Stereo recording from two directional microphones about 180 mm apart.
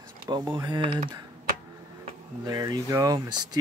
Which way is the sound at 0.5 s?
25° right (ahead or behind).